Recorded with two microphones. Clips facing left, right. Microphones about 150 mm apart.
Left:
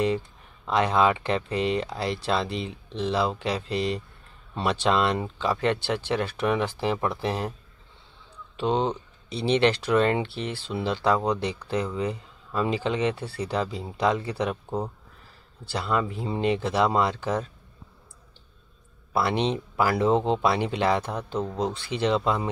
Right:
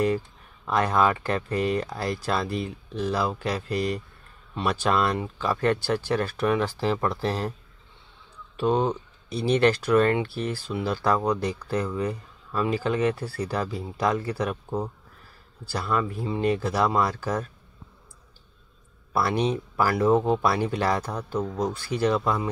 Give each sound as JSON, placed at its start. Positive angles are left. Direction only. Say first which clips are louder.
{"t": 0.7, "sound": "speech", "louder": "left 1 dB", "side_deg": 20}
{"t": 8.5, "sound": "speech", "louder": "right 2 dB", "side_deg": 25}
{"t": 19.1, "sound": "speech", "louder": "even", "side_deg": 20}